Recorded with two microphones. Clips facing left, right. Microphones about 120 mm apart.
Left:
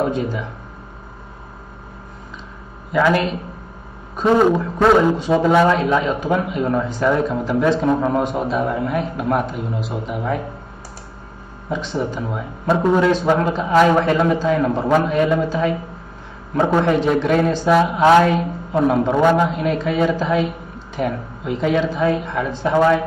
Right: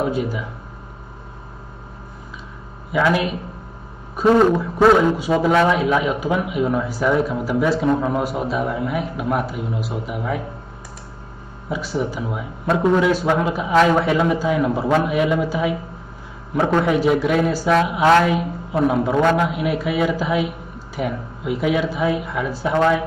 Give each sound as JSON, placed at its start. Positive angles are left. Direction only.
{"t": 0.0, "sound": "a man's voice", "side_deg": -5}
{"t": 2.9, "sound": "a man's voice", "side_deg": -5}
{"t": 11.7, "sound": "a man's voice", "side_deg": -5}
{"t": 13.0, "sound": "a man's voice", "side_deg": -10}
{"t": 16.8, "sound": "a man's voice", "side_deg": -5}